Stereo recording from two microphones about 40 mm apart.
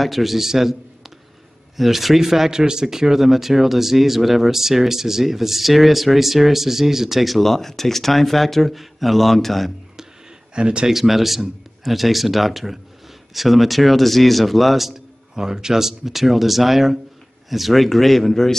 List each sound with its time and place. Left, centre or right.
0.0 s a man's voice: centre
10.5 s speech: right
10.9 s speech: centre
15.3 s speech: centre